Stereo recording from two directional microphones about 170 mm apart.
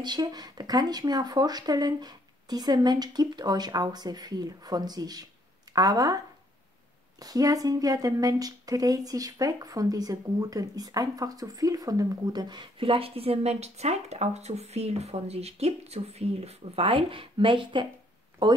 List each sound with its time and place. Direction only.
0.0 s a woman's voice: 25° right (ahead or behind)